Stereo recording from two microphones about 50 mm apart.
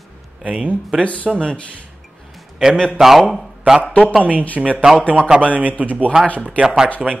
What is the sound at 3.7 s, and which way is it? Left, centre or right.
Speech, right.